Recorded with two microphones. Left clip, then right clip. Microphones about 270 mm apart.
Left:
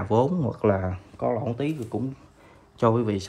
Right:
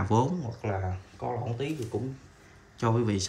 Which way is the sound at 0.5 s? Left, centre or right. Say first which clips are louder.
Left 10 dB; centre.